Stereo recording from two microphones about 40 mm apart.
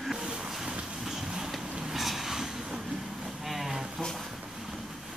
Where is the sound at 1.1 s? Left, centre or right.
Centre.